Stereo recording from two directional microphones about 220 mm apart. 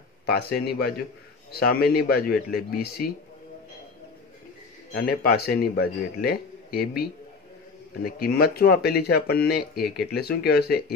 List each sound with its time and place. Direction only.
0.3 s a man's voice: 45° left (ahead or behind)
4.9 s a man's voice: 45° left (ahead or behind)
8.0 s a man's voice: 45° left (ahead or behind)